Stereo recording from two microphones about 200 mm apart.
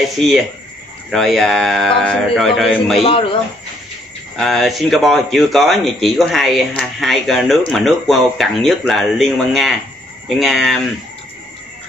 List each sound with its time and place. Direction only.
0.2 s speech: centre (ahead or behind)
3.0 s speech: 25° left (ahead or behind)
4.4 s speech: centre (ahead or behind)